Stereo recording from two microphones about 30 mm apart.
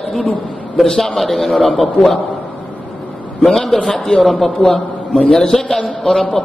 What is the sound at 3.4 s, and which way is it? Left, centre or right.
A man's voice, centre.